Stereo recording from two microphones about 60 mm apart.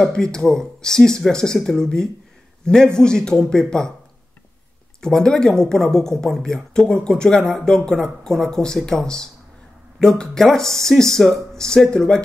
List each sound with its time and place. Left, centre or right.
0.0 s speech: centre
5.0 s speech: centre